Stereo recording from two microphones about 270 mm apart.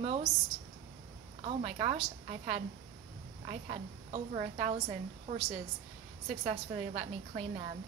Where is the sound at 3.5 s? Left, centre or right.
Right.